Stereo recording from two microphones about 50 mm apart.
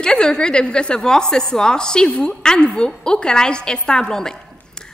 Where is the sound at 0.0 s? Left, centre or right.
Centre.